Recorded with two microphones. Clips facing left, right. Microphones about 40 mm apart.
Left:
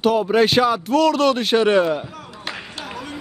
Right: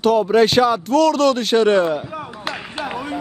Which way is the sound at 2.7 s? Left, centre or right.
Right.